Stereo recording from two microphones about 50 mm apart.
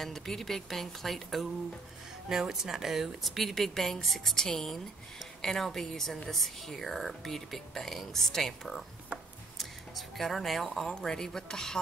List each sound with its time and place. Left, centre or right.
0.0 s speech: centre
2.2 s speech: centre
9.1 s a sound: right
9.6 s speech: centre